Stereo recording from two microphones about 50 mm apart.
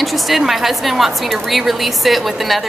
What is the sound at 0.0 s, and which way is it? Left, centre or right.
A woman's voice, centre.